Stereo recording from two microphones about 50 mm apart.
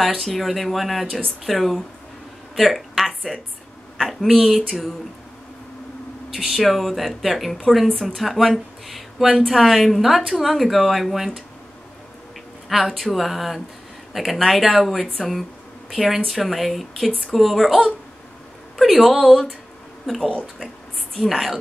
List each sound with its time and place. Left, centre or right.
0.0 s a woman's voice: centre
6.3 s a woman's voice: centre
12.6 s a woman's voice: centre
18.8 s a woman's voice: centre
20.2 s speech: centre
20.5 s a woman's voice: centre